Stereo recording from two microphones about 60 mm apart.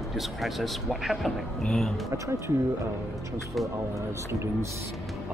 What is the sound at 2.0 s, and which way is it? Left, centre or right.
Speech, right.